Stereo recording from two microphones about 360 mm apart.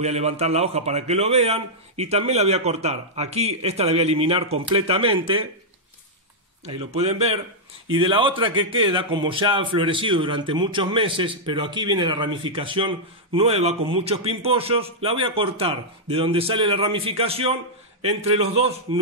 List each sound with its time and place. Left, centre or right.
0.0 s a man's voice: centre
6.6 s a man's voice: centre